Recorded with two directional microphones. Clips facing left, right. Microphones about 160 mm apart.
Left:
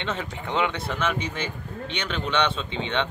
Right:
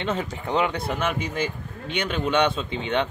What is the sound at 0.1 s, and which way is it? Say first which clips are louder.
Speech: right 3 dB; 35° right (ahead or behind).